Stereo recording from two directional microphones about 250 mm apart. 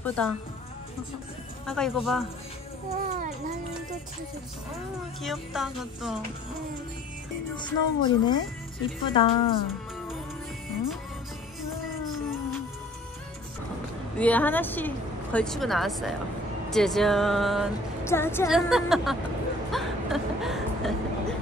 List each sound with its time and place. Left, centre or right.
0.0 s speech: centre
1.7 s a woman's voice: centre
3.1 s a child's voice: right
5.2 s a woman's voice: centre
7.5 s a woman's voice: centre
14.1 s a woman's voice: centre
18.5 s a woman's voice: centre
19.7 s a sound: centre